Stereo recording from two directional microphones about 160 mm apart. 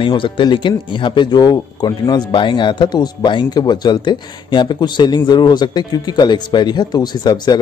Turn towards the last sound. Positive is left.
turn(degrees=25)  # may be behind; listen again after turning